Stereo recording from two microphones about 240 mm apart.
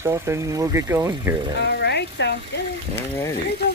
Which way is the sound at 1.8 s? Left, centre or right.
Left.